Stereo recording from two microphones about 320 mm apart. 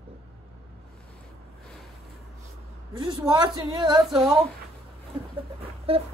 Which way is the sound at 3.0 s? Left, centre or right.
Centre.